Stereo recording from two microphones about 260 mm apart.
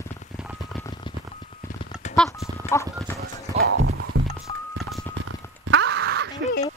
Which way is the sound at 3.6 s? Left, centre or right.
Right.